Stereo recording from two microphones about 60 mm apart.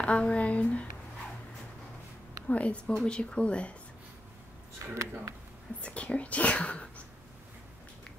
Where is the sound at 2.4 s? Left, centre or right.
Left.